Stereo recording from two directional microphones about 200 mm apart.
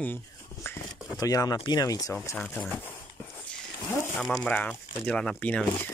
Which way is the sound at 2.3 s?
5° left (ahead or behind).